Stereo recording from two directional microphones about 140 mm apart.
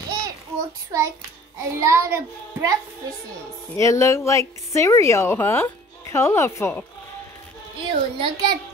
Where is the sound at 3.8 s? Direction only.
20° left (ahead or behind).